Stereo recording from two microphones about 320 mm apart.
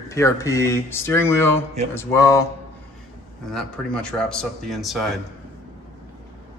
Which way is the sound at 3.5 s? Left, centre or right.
Centre.